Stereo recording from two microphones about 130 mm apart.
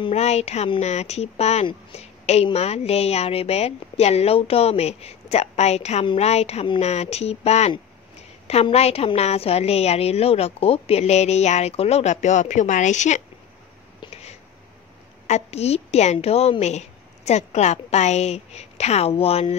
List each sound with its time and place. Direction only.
0.1 s a woman's voice: 55° left (ahead or behind)
15.2 s a woman's voice: 55° left (ahead or behind)